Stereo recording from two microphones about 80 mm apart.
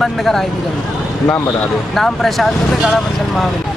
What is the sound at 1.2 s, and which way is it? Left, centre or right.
Speech, left.